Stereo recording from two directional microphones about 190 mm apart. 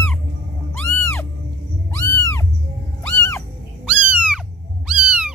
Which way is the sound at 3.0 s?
15° left (ahead or behind).